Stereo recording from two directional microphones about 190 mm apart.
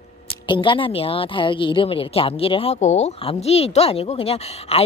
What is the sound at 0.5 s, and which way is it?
A woman's voice, 25° left (ahead or behind).